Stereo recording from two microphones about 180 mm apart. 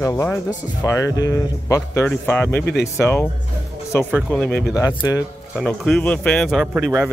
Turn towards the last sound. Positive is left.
turn(degrees=-5)  # may be behind; listen again after turning